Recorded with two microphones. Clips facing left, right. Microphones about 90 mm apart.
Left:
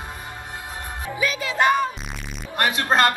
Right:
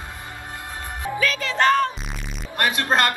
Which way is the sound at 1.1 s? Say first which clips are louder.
Even; 10° left (ahead or behind).